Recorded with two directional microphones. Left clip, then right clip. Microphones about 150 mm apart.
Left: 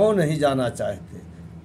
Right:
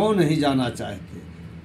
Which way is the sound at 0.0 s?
20° left (ahead or behind).